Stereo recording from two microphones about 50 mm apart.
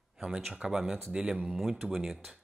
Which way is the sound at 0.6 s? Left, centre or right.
Centre.